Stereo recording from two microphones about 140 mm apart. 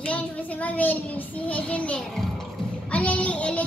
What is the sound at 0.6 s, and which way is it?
Speech, 10° left (ahead or behind).